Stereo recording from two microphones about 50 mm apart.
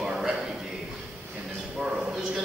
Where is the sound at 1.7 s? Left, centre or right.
Centre.